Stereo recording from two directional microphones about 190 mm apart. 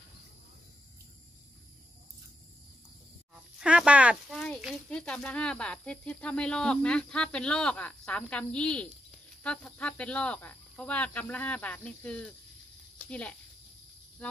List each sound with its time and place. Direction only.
3.5 s speech: 5° right (ahead or behind)